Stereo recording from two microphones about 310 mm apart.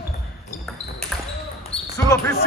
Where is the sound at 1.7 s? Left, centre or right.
Centre.